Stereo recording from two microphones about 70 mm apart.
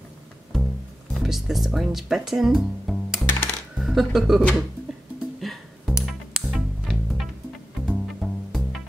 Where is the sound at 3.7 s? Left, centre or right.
Centre.